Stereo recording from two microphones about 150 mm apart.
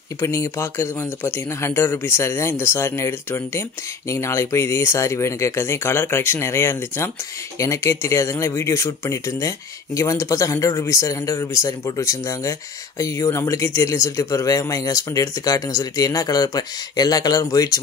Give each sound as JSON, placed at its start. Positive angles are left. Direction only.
{"t": 0.2, "sound": "speech", "side_deg": 20}